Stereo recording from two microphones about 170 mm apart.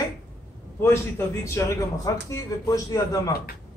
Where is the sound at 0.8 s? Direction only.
15° left (ahead or behind).